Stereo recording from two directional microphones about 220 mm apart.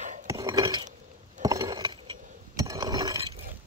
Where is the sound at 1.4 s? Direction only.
15° right (ahead or behind).